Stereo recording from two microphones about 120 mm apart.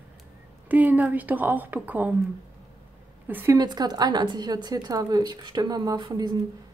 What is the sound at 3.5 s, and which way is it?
A woman's voice, 35° right (ahead or behind).